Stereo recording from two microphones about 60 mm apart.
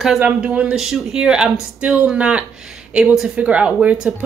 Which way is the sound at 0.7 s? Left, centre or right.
Centre.